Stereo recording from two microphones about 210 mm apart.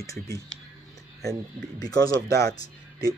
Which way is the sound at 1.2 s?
Centre (ahead or behind).